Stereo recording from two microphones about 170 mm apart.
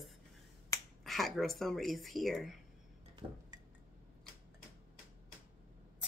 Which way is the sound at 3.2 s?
30° right (ahead or behind).